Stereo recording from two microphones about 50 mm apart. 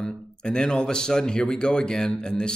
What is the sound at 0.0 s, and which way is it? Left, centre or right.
Speech, centre.